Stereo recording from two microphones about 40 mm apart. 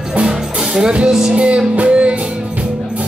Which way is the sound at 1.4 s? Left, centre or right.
Right.